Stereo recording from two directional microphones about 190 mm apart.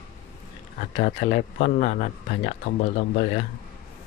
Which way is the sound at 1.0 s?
45° left (ahead or behind).